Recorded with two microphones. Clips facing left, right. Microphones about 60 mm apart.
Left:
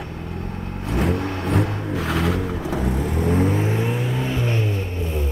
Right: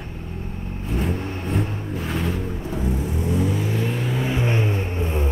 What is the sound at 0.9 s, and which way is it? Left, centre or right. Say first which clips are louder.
Vehicle: left 4 dB; left.